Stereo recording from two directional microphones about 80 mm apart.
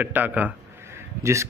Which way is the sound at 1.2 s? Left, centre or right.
Right.